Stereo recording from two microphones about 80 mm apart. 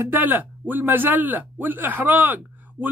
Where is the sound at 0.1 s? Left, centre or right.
Right.